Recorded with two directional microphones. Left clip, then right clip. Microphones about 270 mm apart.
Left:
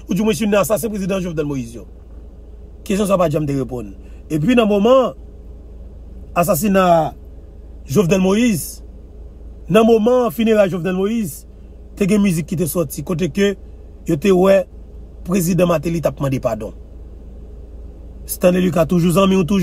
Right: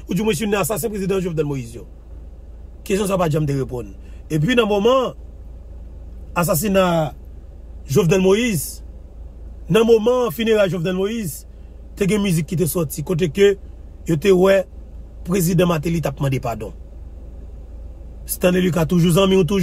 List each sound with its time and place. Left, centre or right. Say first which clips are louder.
0.0 s a man's voice: left 2 dB; centre
6.3 s a man's voice: left 3 dB; centre
9.7 s a man's voice: left 2 dB; centre
18.4 s a man's voice: left 3 dB; centre